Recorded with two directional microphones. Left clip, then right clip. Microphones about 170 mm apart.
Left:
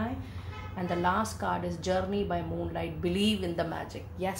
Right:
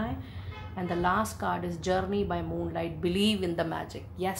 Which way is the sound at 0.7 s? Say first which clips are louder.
Right 1 dB; 40° right (ahead or behind).